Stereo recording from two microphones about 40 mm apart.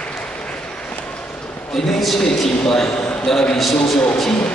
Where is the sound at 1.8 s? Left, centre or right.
Centre.